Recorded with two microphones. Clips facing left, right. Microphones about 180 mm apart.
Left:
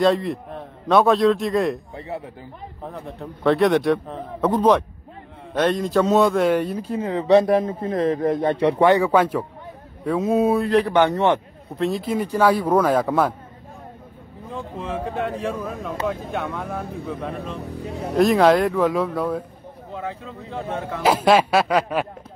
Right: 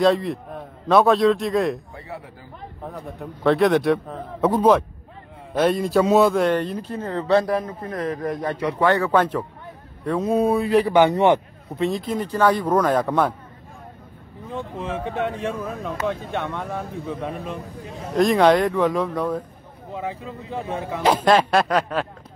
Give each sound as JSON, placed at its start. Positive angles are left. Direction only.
{"t": 0.0, "sound": "speech", "side_deg": 0}
{"t": 2.0, "sound": "a sound", "side_deg": 20}
{"t": 3.2, "sound": "speech", "side_deg": 0}
{"t": 7.3, "sound": "a man's voice", "side_deg": 25}
{"t": 8.8, "sound": "a man's voice", "side_deg": 15}
{"t": 11.8, "sound": "a man's voice", "side_deg": 5}
{"t": 14.5, "sound": "speech", "side_deg": 0}
{"t": 17.6, "sound": "a man's voice", "side_deg": 70}
{"t": 18.1, "sound": "speech", "side_deg": 0}
{"t": 19.9, "sound": "speech", "side_deg": -5}